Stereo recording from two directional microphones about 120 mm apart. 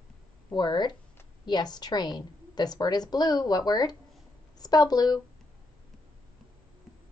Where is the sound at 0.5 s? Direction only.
35° left (ahead or behind).